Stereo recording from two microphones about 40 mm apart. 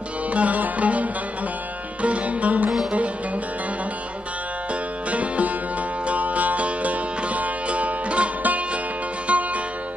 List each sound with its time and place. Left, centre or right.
0.3 s music: right
5.1 s music: right